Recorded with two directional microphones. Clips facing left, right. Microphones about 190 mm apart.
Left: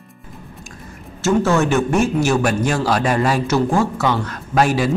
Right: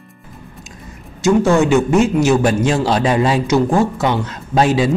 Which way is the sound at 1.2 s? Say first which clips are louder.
Right 3 dB; 15° right (ahead or behind).